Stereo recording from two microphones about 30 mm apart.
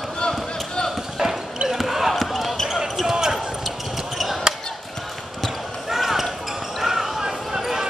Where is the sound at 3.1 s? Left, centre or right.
Centre.